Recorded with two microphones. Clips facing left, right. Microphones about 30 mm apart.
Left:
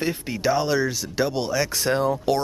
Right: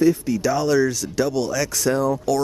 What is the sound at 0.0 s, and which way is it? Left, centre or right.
Speech, left.